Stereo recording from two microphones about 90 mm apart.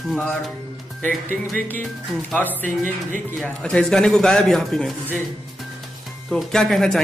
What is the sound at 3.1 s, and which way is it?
Speech, 15° left (ahead or behind).